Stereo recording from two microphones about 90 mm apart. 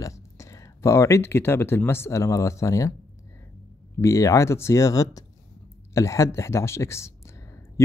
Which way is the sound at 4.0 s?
35° left (ahead or behind).